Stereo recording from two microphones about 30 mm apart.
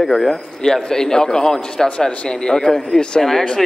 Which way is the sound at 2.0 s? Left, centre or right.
Left.